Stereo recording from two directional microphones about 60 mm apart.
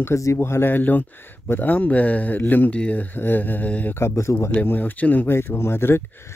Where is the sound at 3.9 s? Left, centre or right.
Left.